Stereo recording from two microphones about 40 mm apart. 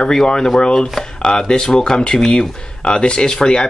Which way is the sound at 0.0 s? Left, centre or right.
Centre.